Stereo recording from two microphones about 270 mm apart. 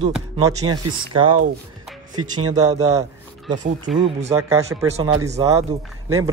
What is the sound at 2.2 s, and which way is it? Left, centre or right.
Speech, right.